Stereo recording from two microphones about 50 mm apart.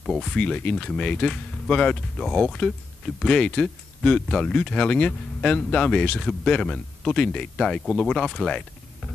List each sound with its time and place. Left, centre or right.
0.2 s speech: centre